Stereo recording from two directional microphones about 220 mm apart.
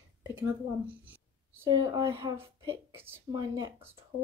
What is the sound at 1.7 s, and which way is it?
Speech, 20° right (ahead or behind).